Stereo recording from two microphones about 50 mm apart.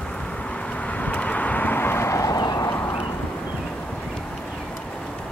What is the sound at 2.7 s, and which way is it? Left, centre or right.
Clip-clop, left.